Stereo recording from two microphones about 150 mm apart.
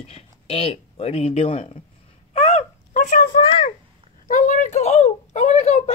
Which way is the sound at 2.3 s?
40° left (ahead or behind).